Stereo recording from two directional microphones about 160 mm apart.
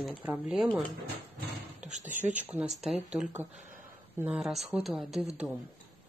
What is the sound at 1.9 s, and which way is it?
Speech, 50° right (ahead or behind).